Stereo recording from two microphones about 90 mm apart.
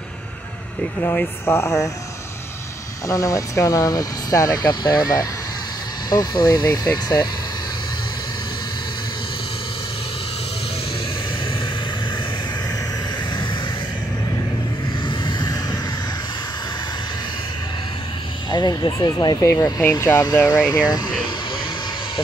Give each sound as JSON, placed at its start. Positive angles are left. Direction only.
{"t": 1.0, "sound": "speech", "side_deg": 25}
{"t": 3.1, "sound": "speech", "side_deg": 40}
{"t": 15.2, "sound": "music", "side_deg": 50}
{"t": 18.5, "sound": "speech", "side_deg": 50}
{"t": 19.4, "sound": "speech", "side_deg": 35}